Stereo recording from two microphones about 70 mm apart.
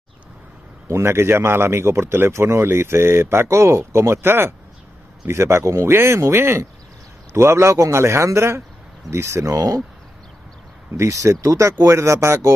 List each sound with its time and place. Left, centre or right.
0.8 s speech: right
11.0 s speech: right